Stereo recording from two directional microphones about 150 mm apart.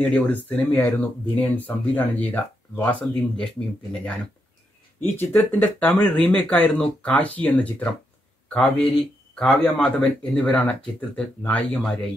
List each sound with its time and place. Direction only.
0.0 s speech: 10° left (ahead or behind)